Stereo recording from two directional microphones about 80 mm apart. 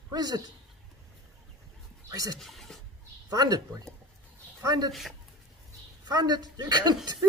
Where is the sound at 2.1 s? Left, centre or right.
Right.